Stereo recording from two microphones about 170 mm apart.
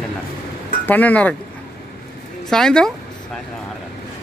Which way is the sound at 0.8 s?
10° left (ahead or behind).